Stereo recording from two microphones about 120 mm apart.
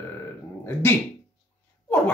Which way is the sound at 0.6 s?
20° left (ahead or behind).